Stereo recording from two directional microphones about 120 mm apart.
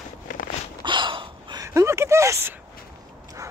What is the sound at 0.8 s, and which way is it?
Gasp, 40° right (ahead or behind).